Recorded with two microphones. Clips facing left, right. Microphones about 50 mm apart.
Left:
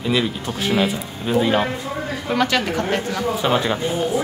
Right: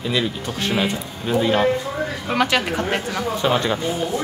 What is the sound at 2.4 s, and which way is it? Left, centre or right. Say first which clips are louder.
Speech: even; right.